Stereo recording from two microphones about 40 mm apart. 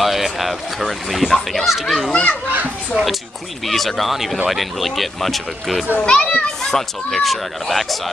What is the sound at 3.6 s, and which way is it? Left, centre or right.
Speech, centre.